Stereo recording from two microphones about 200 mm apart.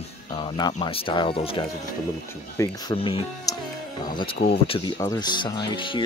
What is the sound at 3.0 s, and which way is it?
Speech, 25° left (ahead or behind).